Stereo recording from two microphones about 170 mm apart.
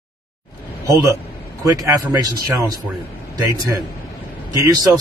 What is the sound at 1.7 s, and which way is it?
Speech, 20° right (ahead or behind).